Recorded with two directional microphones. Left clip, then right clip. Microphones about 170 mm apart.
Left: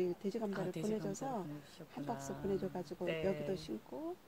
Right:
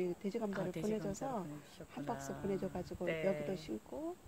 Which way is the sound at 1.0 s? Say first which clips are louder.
Even; 15° right (ahead or behind).